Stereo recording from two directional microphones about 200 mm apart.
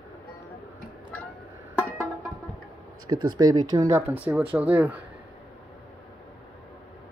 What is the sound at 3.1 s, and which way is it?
Speech, 20° right (ahead or behind).